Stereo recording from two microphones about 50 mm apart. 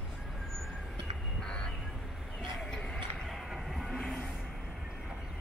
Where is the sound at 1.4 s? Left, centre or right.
Centre.